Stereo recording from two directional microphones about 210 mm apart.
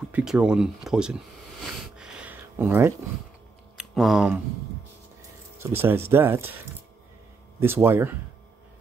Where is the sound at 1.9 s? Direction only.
5° right (ahead or behind).